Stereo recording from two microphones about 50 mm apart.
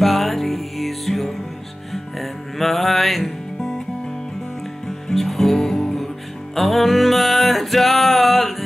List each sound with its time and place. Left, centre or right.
0.0 s music: centre
4.8 s music: centre